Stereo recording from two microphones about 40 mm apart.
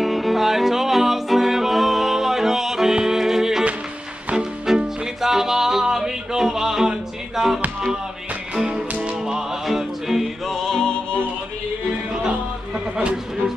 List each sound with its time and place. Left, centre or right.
0.0 s music: centre
10.4 s music: centre
12.1 s music: centre